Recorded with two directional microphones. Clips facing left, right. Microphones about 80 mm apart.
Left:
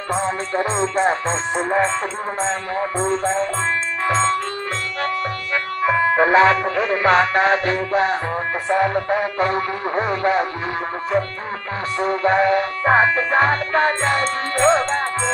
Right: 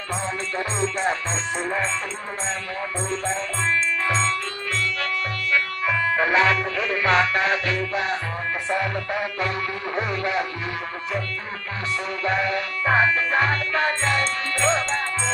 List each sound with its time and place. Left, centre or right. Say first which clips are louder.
0.1 s music: left 6 dB; left
2.4 s music: left 7 dB; left
12.0 s music: left 9 dB; left